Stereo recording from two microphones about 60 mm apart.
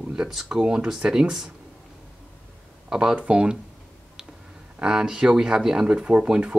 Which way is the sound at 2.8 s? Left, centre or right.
Centre.